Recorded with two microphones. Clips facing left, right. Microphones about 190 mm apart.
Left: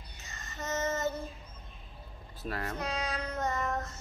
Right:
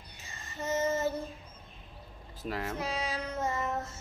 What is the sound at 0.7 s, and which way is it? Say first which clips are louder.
Female singing: right 2 dB; 10° right (ahead or behind).